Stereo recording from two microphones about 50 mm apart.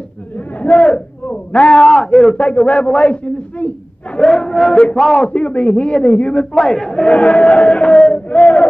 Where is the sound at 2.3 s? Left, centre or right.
Centre.